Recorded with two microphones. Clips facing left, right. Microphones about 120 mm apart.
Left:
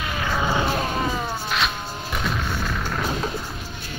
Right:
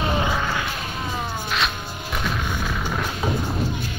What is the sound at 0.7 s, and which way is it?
Music, 50° left (ahead or behind).